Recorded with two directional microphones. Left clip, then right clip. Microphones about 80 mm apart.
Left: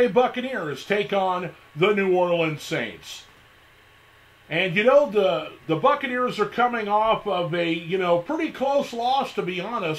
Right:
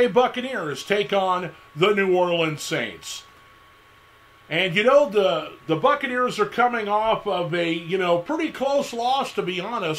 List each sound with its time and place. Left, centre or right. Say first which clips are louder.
0.0 s a man's voice: right 1 dB; centre
4.5 s a man's voice: right 1 dB; centre